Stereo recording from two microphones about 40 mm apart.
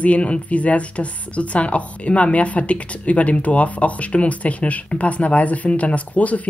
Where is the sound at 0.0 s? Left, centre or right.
Left.